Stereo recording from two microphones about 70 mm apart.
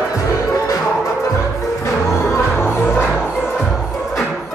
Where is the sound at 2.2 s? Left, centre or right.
Left.